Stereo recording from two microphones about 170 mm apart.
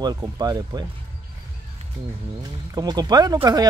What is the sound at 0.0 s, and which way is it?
Speech, 20° right (ahead or behind).